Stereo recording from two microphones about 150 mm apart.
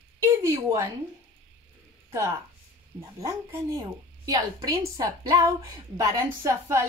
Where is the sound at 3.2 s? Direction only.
20° right (ahead or behind).